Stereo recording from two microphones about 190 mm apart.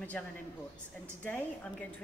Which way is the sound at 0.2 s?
5° left (ahead or behind).